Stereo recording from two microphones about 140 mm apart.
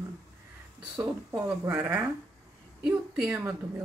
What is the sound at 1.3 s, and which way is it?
Speech, 25° right (ahead or behind).